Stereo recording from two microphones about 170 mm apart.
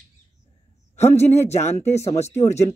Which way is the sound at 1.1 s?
15° left (ahead or behind).